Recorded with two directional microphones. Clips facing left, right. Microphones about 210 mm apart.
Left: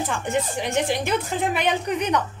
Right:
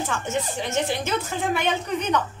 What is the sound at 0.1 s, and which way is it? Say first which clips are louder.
A woman's voice: left 2 dB; 15° left (ahead or behind).